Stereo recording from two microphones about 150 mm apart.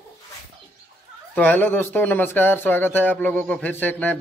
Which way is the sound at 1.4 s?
10° left (ahead or behind).